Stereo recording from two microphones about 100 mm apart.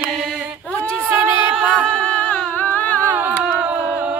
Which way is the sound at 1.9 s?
10° left (ahead or behind).